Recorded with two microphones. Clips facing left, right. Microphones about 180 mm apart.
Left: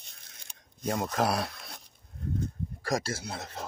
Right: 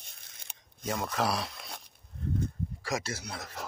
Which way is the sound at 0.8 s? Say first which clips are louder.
Left 3 dB; 50° left (ahead or behind).